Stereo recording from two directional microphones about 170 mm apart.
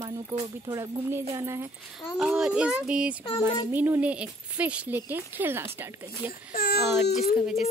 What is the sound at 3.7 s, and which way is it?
Speech, 10° right (ahead or behind).